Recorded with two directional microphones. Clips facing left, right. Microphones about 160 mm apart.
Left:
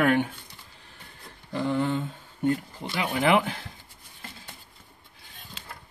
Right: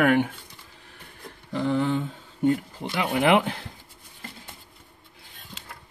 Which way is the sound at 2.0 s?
15° right (ahead or behind).